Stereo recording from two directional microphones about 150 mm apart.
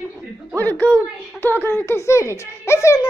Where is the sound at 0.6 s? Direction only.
10° left (ahead or behind).